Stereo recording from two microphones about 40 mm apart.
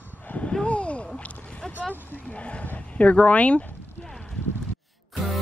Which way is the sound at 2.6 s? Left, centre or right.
Left.